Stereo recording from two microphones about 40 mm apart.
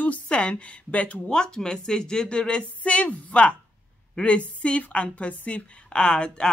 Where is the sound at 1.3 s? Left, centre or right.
Centre.